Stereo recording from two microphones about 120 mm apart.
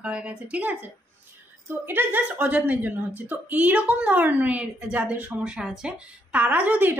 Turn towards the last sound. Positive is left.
turn(degrees=-15)  # may be behind; listen again after turning